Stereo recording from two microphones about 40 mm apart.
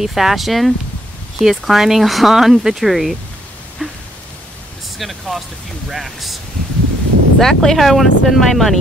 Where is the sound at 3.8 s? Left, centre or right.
Centre.